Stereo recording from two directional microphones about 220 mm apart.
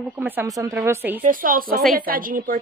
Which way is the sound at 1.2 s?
40° right (ahead or behind).